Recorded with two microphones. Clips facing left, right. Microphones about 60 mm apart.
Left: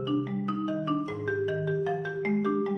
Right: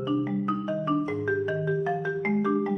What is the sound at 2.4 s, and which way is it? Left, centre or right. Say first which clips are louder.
Music: right 2 dB; centre.